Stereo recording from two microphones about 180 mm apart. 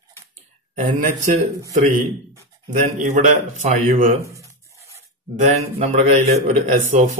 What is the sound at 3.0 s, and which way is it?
Speech, 45° right (ahead or behind).